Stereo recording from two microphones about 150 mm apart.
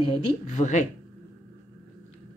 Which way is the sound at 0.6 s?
55° left (ahead or behind).